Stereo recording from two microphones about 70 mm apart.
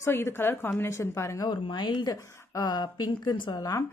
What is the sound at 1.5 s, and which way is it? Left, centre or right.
Speech, left.